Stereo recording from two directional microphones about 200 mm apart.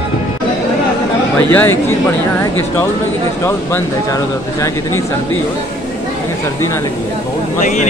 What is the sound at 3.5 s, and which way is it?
Speech, 15° left (ahead or behind).